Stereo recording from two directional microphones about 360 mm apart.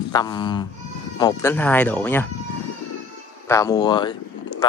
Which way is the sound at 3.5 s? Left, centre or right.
Centre.